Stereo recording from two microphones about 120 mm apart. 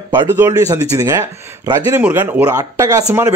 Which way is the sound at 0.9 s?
30° right (ahead or behind).